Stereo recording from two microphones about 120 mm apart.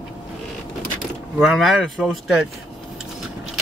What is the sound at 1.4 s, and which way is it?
Speech, centre (ahead or behind).